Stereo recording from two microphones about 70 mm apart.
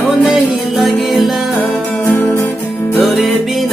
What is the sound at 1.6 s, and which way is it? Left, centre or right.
Music, left.